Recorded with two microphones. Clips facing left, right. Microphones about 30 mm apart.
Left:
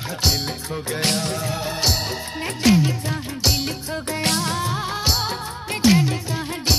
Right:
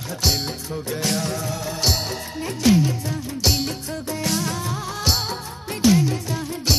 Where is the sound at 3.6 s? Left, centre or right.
Left.